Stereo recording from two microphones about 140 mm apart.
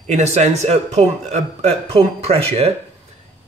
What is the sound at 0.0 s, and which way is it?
Speech, 55° right (ahead or behind).